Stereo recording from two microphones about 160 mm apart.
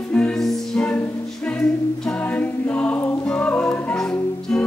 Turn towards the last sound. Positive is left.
turn(degrees=5)  # may be behind; listen again after turning